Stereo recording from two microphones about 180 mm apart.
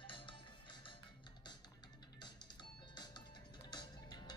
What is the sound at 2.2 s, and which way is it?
Music, 25° left (ahead or behind).